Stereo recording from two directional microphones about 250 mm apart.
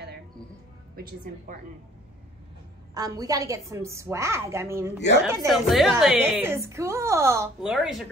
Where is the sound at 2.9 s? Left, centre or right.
Centre.